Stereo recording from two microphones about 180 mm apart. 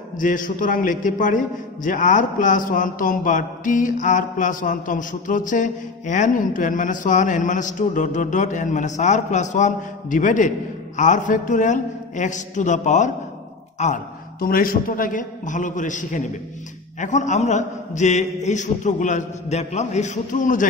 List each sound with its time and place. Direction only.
0.2 s a man's voice: 50° left (ahead or behind)